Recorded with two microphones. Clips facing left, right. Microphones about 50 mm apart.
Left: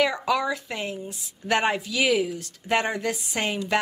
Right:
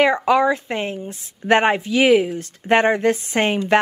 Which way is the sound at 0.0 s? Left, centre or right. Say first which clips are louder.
Right 8 dB; right.